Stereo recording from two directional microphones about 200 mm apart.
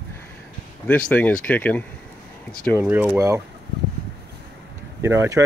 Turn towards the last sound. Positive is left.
turn(degrees=-15)  # may be behind; listen again after turning